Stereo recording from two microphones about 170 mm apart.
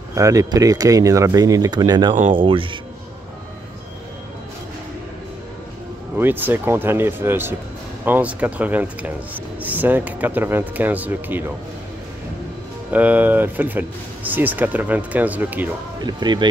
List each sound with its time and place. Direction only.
0.1 s speech: 20° right (ahead or behind)
6.1 s speech: 10° right (ahead or behind)
12.9 s speech: 10° right (ahead or behind)
16.1 s speech: 25° right (ahead or behind)